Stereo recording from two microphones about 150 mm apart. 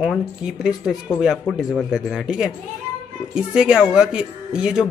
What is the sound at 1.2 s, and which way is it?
A man's voice, 5° right (ahead or behind).